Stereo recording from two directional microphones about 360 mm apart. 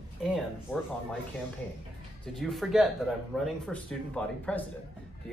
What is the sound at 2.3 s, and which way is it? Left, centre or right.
Speech, centre.